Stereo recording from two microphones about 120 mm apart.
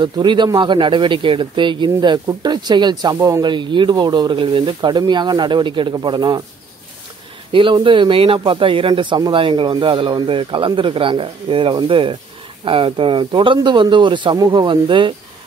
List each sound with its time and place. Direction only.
0.0 s speech: 40° right (ahead or behind)
7.5 s speech: 45° right (ahead or behind)